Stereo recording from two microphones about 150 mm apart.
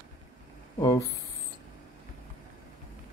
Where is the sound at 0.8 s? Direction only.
25° left (ahead or behind).